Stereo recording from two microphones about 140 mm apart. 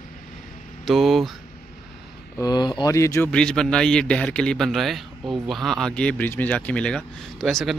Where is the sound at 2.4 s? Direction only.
30° left (ahead or behind).